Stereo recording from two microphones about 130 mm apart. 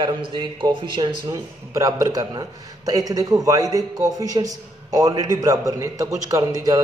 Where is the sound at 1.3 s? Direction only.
25° right (ahead or behind).